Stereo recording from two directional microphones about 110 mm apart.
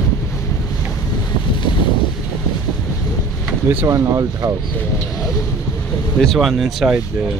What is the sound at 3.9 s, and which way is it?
Speech, 30° right (ahead or behind).